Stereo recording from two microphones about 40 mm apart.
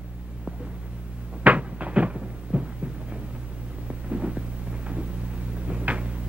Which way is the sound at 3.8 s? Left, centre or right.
Right.